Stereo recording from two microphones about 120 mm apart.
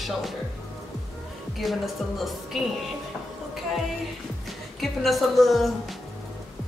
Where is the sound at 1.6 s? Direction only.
Centre (ahead or behind).